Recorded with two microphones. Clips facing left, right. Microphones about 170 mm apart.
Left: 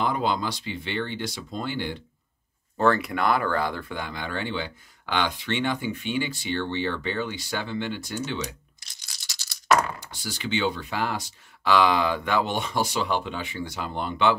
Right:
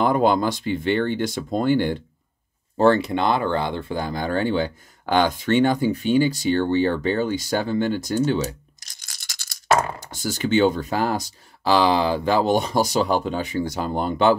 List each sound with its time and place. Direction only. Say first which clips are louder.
0.0 s speech: right 7 dB; 50° right (ahead or behind)
2.8 s speech: right 5 dB; 30° right (ahead or behind)
4.0 s speech: right 10 dB; 40° right (ahead or behind)
8.4 s a sound: right 7 dB; 40° right (ahead or behind)
9.9 s speech: right 8 dB; 45° right (ahead or behind)